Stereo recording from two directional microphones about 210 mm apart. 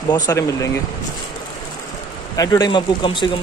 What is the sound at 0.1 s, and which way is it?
Speech, 15° left (ahead or behind).